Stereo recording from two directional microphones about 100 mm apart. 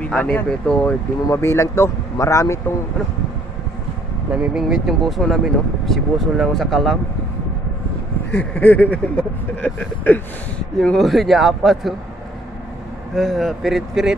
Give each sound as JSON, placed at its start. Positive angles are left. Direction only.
{"t": 0.0, "sound": "vehicle", "side_deg": 15}
{"t": 1.3, "sound": "speech", "side_deg": 25}
{"t": 4.3, "sound": "speech", "side_deg": -10}
{"t": 8.3, "sound": "vehicle", "side_deg": 20}
{"t": 10.8, "sound": "speech", "side_deg": 5}
{"t": 13.1, "sound": "speech", "side_deg": 0}